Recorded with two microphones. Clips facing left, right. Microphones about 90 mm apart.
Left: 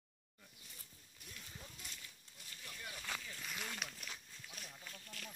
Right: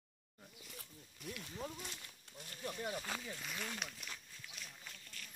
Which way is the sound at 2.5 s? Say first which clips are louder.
Right 10 dB; 40° right (ahead or behind).